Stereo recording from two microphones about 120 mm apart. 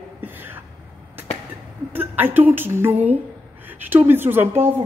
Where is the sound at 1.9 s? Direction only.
15° right (ahead or behind).